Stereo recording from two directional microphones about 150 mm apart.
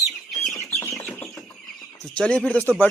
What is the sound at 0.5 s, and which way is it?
Bird, 15° left (ahead or behind).